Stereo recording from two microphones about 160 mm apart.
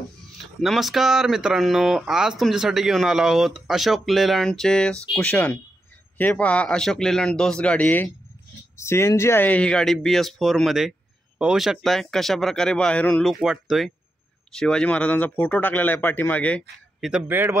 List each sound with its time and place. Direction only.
0.4 s speech: centre (ahead or behind)
17.0 s speech: 10° right (ahead or behind)